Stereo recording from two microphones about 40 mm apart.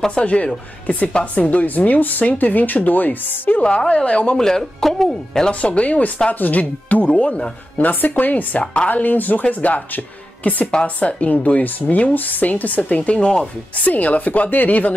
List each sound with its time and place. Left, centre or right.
0.1 s speech: left
3.6 s a woman's voice: left
4.4 s speech: centre
5.5 s speech: left
7.8 s speech: left
13.8 s speech: left